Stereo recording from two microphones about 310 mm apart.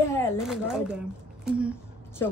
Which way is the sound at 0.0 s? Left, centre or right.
Centre.